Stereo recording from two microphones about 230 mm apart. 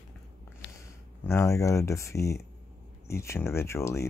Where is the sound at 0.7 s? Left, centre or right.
Centre.